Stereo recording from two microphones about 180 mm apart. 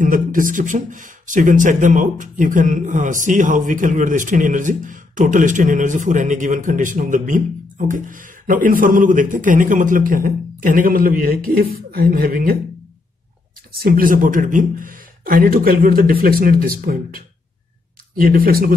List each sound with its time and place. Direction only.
0.0 s speech: 50° right (ahead or behind)
13.8 s speech: 50° right (ahead or behind)